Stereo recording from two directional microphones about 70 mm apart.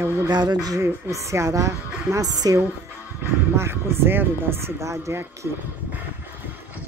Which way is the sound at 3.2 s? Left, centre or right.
Right.